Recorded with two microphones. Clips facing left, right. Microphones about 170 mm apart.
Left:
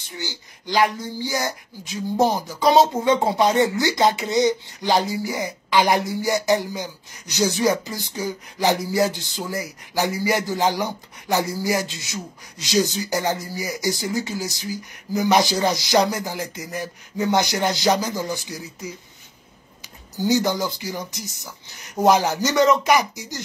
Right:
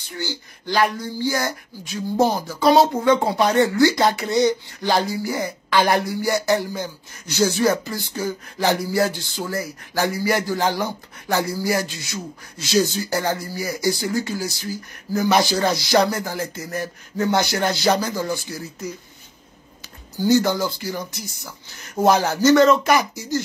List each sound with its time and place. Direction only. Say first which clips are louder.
0.0 s speech: right 4 dB; 20° left (ahead or behind)
20.2 s speech: right 3 dB; 15° left (ahead or behind)